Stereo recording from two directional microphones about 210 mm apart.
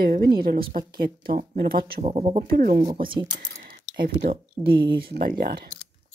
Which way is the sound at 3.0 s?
20° right (ahead or behind).